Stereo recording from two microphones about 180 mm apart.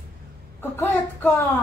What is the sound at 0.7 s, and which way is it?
Speech, 10° left (ahead or behind).